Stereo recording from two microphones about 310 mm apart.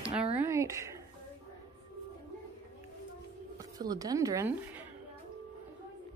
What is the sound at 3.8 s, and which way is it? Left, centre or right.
Speech, centre.